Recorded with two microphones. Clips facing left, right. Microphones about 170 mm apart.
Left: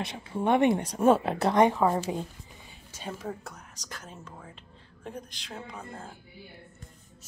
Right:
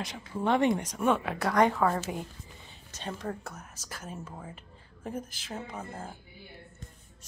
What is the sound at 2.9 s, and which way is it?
A woman's voice, 5° left (ahead or behind).